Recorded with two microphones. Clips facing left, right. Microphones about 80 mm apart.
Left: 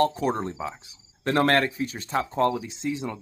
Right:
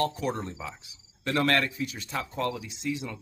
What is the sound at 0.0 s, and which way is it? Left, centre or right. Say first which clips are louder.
A man's voice: left 5 dB; left.